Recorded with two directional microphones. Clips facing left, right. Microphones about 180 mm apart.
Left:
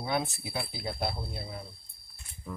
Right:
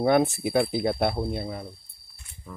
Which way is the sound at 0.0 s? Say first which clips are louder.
Right 11 dB; 60° right (ahead or behind).